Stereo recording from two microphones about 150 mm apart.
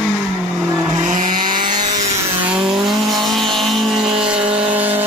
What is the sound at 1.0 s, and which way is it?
Vehicle, 60° right (ahead or behind).